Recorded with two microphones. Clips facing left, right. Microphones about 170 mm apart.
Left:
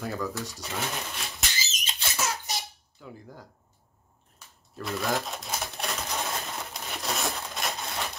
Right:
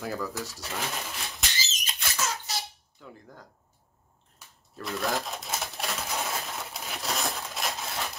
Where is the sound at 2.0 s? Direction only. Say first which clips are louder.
Left 1 dB; 30° left (ahead or behind).